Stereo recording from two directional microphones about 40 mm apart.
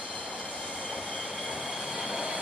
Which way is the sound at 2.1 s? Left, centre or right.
Centre.